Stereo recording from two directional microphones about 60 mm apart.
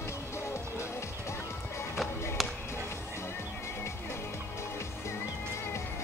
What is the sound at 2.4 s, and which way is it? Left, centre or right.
Basketball bounce, centre.